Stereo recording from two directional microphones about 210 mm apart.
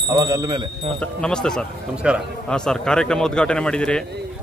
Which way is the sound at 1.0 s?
5° left (ahead or behind).